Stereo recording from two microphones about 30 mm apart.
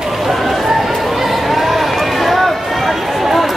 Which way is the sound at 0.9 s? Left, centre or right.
Centre.